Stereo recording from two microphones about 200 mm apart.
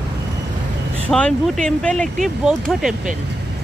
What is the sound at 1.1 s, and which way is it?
Speech, 5° left (ahead or behind).